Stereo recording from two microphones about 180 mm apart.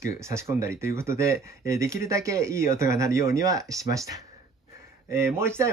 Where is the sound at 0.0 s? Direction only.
15° right (ahead or behind).